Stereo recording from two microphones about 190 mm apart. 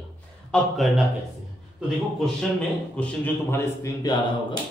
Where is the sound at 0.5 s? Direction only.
Centre (ahead or behind).